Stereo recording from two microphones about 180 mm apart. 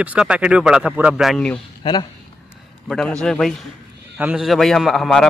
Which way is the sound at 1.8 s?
25° left (ahead or behind).